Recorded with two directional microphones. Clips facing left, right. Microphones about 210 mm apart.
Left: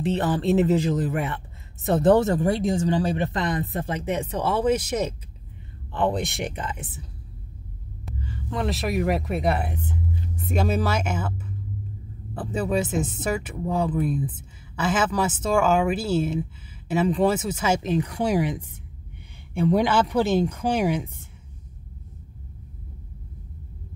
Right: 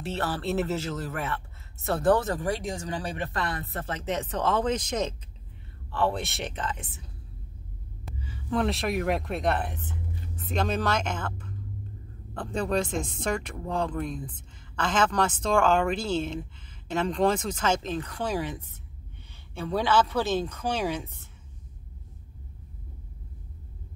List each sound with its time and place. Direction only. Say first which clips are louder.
0.0 s a woman's voice: left 7 dB; 15° left (ahead or behind)
8.0 s a woman's voice: left 6 dB; centre (ahead or behind); by 21.1 s 15° left (ahead or behind)